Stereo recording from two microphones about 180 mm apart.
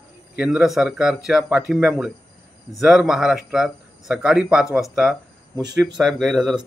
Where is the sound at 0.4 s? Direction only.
5° right (ahead or behind).